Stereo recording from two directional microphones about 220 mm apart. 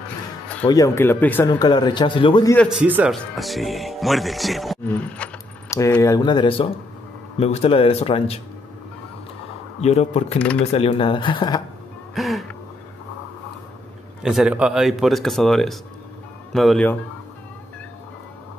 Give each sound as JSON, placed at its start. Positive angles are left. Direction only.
{"t": 0.7, "sound": "speech", "side_deg": 15}
{"t": 2.5, "sound": "speech", "side_deg": 0}
{"t": 9.8, "sound": "speech", "side_deg": 30}
{"t": 12.1, "sound": "music", "side_deg": 0}
{"t": 14.2, "sound": "speech", "side_deg": 0}